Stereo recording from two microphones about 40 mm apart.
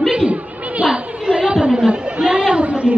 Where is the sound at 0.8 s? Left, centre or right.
Centre.